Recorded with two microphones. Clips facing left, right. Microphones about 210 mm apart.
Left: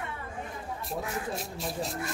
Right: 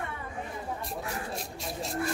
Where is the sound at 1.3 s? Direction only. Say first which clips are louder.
Left 2 dB; centre (ahead or behind).